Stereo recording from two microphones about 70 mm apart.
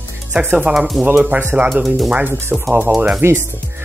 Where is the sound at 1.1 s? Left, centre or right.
Right.